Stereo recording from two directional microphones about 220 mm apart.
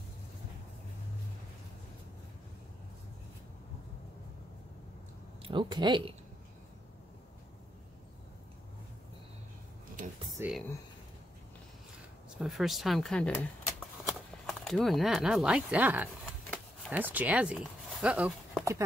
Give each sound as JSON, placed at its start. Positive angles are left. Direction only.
{"t": 5.4, "sound": "speech", "side_deg": -20}
{"t": 10.4, "sound": "a sound", "side_deg": -10}
{"t": 12.4, "sound": "speech", "side_deg": 0}